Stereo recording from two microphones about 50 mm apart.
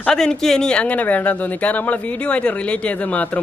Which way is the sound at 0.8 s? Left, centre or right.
Left.